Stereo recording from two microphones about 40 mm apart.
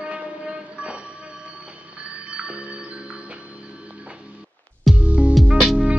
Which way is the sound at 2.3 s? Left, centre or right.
Right.